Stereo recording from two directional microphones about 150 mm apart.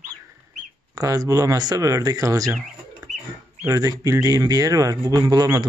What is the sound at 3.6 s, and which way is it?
Speech, 25° right (ahead or behind).